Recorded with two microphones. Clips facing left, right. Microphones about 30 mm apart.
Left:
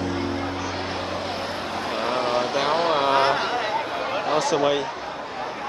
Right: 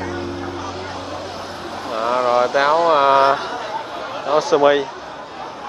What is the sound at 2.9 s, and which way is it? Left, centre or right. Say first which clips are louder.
Speech: right 7 dB; centre.